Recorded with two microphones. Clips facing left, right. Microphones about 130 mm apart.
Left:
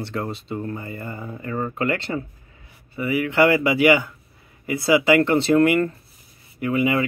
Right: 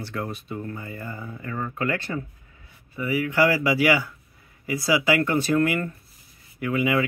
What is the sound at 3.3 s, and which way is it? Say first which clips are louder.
Speech: left 4 dB; 65° left (ahead or behind).